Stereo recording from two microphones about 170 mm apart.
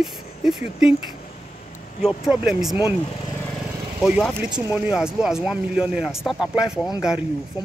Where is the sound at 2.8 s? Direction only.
30° left (ahead or behind).